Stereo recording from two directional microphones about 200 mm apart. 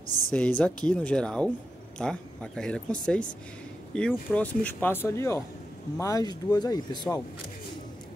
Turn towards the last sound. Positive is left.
turn(degrees=20)  # may be behind; listen again after turning